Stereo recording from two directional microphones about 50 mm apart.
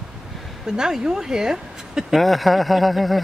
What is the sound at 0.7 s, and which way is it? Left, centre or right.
A woman's voice, centre.